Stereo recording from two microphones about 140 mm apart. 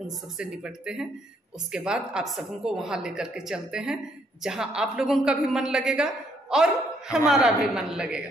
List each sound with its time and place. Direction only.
0.4 s a woman's voice: 5° right (ahead or behind)